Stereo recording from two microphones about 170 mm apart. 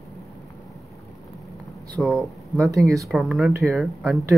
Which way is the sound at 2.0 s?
Centre (ahead or behind).